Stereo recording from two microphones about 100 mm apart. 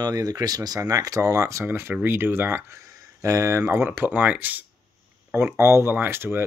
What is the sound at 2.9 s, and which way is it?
Speech, 35° right (ahead or behind).